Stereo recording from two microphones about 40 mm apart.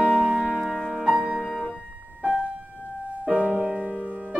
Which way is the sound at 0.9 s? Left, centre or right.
Right.